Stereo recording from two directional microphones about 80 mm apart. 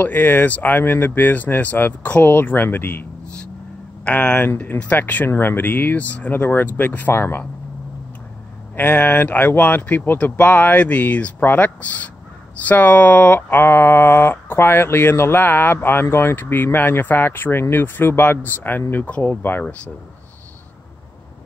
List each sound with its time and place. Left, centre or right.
0.0 s speech: left
8.7 s speech: left